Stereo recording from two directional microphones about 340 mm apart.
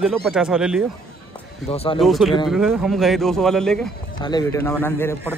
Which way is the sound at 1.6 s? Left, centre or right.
Centre.